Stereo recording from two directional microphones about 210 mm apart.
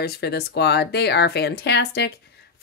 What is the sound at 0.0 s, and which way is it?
A woman's voice, 50° left (ahead or behind).